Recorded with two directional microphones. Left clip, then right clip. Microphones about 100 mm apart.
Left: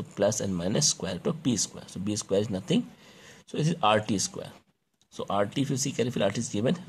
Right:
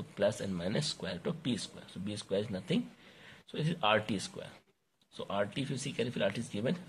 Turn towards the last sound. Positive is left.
turn(degrees=40)  # may be behind; listen again after turning